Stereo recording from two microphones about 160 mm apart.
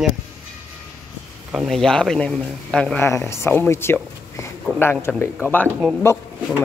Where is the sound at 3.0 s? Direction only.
15° left (ahead or behind).